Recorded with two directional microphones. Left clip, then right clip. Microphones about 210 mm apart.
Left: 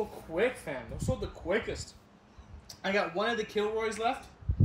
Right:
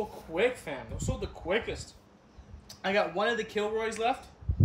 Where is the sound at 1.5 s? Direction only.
Centre (ahead or behind).